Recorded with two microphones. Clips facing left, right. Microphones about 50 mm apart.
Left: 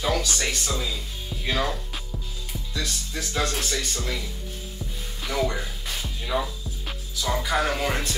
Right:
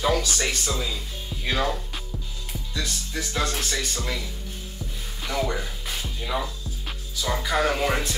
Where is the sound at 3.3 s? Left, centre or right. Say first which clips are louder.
Left 1 dB; right.